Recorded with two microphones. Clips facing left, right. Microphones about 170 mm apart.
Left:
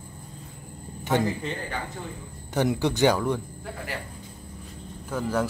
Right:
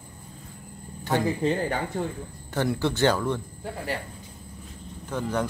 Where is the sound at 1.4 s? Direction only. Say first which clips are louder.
Right 8 dB; 40° right (ahead or behind).